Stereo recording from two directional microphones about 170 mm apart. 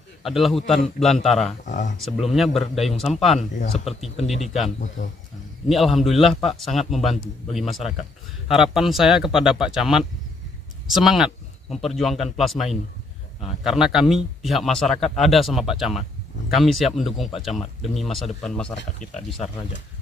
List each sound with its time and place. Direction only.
0.2 s a man's voice: centre (ahead or behind)
1.6 s speech: 45° left (ahead or behind)
2.0 s a man's voice: centre (ahead or behind)
4.7 s speech: 45° left (ahead or behind)
5.7 s a man's voice: centre (ahead or behind)